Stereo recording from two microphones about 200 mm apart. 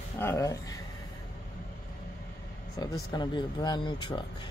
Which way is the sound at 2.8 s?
20° left (ahead or behind).